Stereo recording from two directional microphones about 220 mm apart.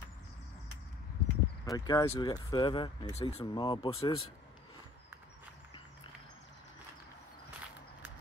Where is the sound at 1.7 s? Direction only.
15° left (ahead or behind).